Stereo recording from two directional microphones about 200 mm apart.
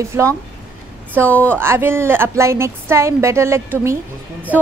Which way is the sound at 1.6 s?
10° right (ahead or behind).